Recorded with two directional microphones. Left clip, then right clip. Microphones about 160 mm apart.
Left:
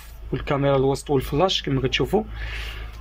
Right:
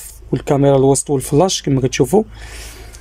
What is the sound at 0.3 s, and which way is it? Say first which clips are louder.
Speech: right 8 dB; 40° right (ahead or behind).